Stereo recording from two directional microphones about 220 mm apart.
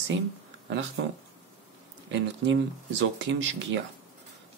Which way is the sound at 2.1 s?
55° right (ahead or behind).